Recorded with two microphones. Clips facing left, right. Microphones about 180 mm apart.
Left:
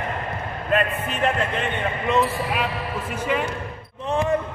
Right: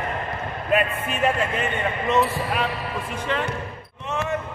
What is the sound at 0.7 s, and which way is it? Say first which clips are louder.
Speech: even; 10° right (ahead or behind).